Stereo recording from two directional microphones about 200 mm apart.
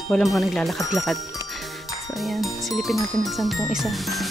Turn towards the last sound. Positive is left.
turn(degrees=0)  # may be behind; listen again after turning